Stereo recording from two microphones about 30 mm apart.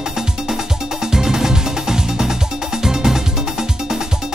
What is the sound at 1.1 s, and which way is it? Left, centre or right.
Music, centre.